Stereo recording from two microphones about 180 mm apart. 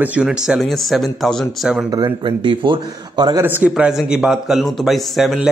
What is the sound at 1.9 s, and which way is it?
Speech, 25° right (ahead or behind).